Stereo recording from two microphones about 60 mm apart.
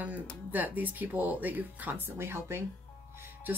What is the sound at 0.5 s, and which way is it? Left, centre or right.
Speech, right.